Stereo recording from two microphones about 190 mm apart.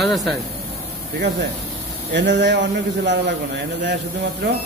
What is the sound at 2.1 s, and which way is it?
A man's voice, 65° right (ahead or behind).